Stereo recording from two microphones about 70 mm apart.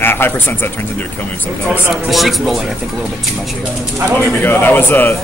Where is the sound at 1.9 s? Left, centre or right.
Centre.